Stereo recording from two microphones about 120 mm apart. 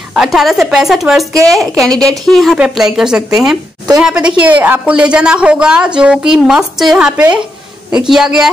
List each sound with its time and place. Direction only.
0.1 s a woman's voice: 5° right (ahead or behind)